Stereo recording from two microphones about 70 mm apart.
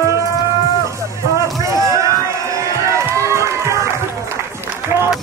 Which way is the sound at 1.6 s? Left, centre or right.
Right.